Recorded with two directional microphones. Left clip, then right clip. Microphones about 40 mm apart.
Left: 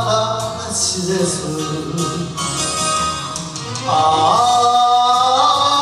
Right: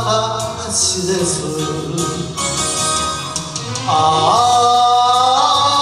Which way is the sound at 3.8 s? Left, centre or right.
Centre.